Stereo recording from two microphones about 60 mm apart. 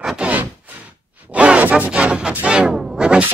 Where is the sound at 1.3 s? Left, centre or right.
Right.